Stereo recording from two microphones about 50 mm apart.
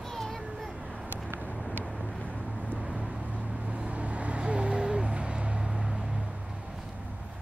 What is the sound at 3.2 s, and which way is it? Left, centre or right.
Vehicle, right.